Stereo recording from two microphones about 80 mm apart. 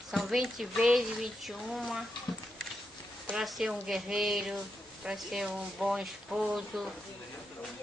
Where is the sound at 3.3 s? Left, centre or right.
Centre.